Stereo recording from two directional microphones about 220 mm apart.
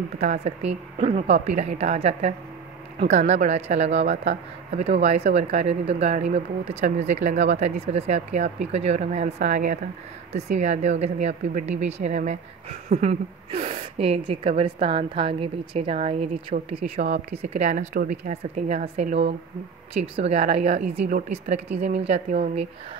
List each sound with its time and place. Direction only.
0.2 s a woman's voice: 30° right (ahead or behind)